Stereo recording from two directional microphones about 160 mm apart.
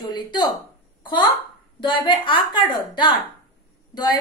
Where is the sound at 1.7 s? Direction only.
30° left (ahead or behind).